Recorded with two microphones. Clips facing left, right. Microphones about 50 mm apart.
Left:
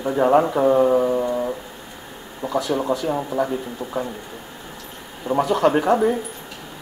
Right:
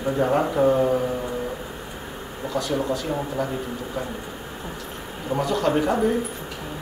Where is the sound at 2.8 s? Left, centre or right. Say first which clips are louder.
Left 3 dB; centre.